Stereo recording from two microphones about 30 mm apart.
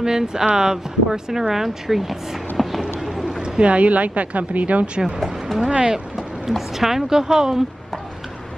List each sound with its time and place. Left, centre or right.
0.0 s speech: right; by 2.8 s centre
3.4 s a sound: right
3.7 s speech: right
5.6 s speech: right
6.8 s speech: centre